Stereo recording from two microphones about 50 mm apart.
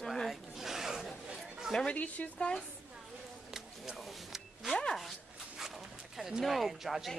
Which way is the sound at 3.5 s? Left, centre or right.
Centre.